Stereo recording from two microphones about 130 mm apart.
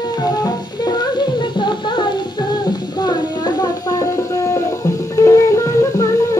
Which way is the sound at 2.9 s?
35° left (ahead or behind).